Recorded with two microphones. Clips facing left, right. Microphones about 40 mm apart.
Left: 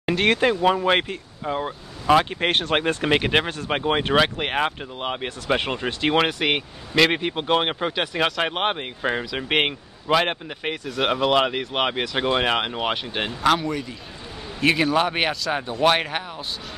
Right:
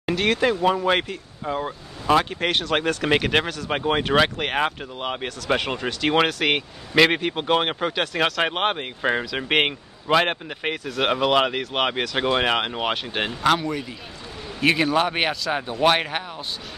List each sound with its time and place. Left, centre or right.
0.1 s speech: left
0.5 s speech: left
1.4 s speech: centre
2.4 s speech: left
2.7 s speech: left
3.1 s speech: centre
8.4 s speech: centre